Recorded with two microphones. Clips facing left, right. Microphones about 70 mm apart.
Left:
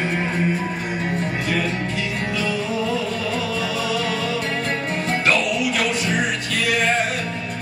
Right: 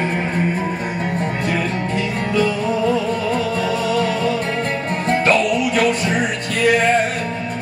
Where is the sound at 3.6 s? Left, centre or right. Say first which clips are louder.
Right 5 dB; right.